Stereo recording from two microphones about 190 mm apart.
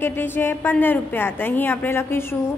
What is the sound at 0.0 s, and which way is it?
A woman's voice, 10° left (ahead or behind).